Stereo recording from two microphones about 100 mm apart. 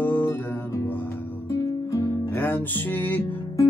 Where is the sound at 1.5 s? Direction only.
30° left (ahead or behind).